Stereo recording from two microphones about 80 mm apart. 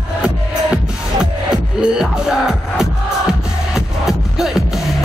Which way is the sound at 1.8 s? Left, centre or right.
Centre.